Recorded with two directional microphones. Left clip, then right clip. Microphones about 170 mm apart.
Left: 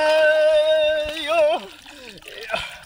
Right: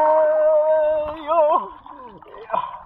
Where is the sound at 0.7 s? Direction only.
15° left (ahead or behind).